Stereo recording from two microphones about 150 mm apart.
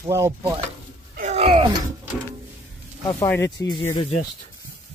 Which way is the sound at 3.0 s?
20° left (ahead or behind).